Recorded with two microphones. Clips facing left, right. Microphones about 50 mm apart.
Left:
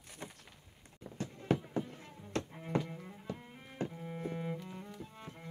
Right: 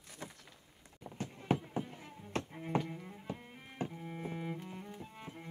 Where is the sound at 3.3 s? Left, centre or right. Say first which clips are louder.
Left 1 dB; centre.